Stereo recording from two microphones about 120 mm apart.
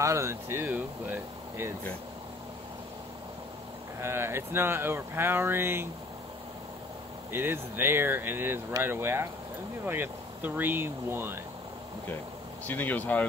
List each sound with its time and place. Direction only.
0.0 s speech: 25° right (ahead or behind)
4.0 s speech: 20° right (ahead or behind)
7.3 s speech: 20° right (ahead or behind)
12.6 s speech: 15° left (ahead or behind)